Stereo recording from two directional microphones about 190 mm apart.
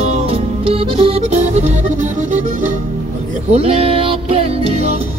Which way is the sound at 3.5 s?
30° right (ahead or behind).